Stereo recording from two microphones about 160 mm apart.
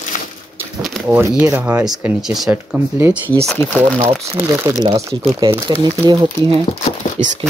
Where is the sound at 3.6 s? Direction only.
35° right (ahead or behind).